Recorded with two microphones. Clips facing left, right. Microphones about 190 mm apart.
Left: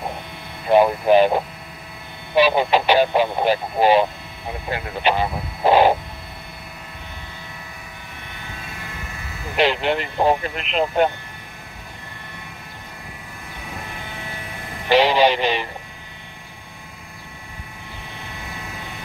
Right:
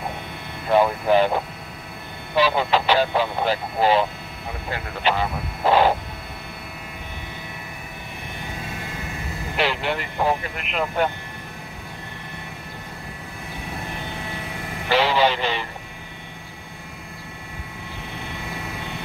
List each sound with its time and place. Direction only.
0.7 s speech: 20° left (ahead or behind)
9.6 s speech: 20° left (ahead or behind)
14.9 s speech: 15° left (ahead or behind)